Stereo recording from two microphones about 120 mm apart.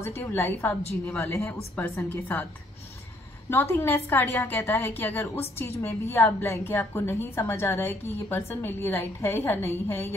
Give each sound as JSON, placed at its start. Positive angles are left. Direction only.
{"t": 0.0, "sound": "a woman's voice", "side_deg": 20}
{"t": 3.4, "sound": "a woman's voice", "side_deg": 20}